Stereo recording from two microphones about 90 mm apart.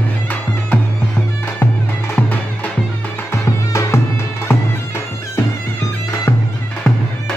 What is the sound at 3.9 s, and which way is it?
Music, 30° left (ahead or behind).